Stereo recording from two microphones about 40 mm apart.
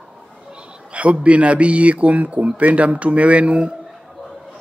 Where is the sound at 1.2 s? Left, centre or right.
Right.